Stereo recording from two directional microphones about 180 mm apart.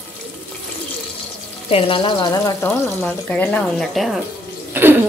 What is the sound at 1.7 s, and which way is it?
Speech, 30° left (ahead or behind).